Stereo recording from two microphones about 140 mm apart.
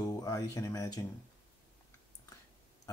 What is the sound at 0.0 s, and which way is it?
Speech, 25° left (ahead or behind).